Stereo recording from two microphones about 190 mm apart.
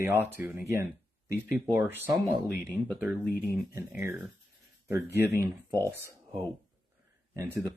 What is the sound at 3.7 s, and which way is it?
Speech, 10° right (ahead or behind).